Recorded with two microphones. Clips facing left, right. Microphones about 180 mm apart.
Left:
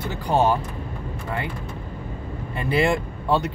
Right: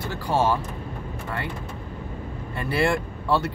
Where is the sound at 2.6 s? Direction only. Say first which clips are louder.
Left 2 dB; 20° left (ahead or behind).